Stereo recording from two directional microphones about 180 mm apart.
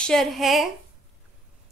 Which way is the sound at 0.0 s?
Centre (ahead or behind).